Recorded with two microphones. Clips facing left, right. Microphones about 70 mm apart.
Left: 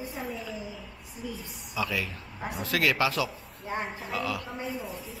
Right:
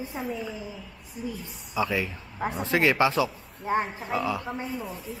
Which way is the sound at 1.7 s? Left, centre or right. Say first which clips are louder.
Right 4 dB; right.